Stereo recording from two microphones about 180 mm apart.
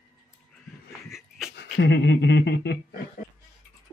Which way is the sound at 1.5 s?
75° left (ahead or behind).